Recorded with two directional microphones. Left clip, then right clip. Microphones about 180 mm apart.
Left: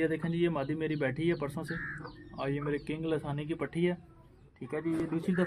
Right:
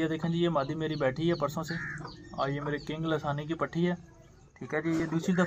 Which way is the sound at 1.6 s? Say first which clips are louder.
Right 2 dB; 35° left (ahead or behind).